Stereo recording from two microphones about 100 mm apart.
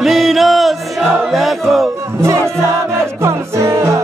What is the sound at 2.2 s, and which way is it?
Music, 30° right (ahead or behind).